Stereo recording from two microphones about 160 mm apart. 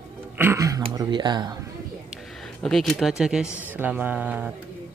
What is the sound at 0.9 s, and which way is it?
Speech, 25° right (ahead or behind).